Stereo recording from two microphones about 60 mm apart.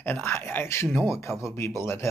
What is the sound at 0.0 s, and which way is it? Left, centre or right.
Speech, left.